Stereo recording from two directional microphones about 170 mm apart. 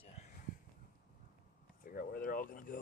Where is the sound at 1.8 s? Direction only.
55° left (ahead or behind).